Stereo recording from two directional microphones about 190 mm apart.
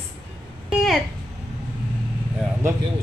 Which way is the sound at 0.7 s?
Centre (ahead or behind).